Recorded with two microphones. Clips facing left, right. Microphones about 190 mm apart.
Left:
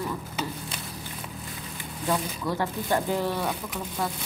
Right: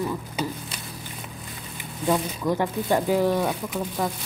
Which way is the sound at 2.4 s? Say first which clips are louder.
Right 4 dB; 15° right (ahead or behind).